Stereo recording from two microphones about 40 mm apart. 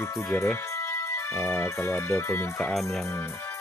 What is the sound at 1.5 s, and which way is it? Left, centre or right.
Speech, left.